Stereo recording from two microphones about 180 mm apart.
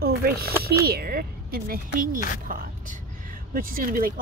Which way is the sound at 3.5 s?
50° right (ahead or behind).